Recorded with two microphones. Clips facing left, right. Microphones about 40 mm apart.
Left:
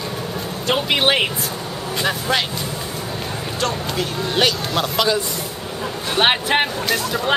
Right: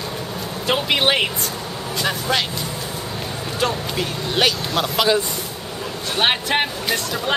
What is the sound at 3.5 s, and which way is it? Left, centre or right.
Speech, centre.